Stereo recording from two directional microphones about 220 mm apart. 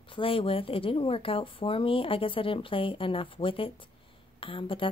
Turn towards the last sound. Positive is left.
turn(degrees=25)  # may be behind; listen again after turning